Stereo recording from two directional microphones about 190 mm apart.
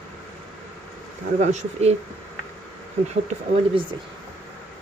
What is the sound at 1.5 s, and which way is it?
Speech, 35° right (ahead or behind).